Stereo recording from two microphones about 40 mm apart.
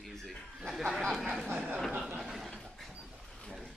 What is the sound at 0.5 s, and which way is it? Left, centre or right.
Speech, centre.